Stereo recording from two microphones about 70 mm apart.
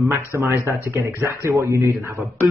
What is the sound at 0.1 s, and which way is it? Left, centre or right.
A man's voice, right.